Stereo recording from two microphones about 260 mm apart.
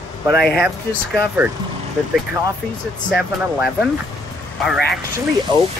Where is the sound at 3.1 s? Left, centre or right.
Centre.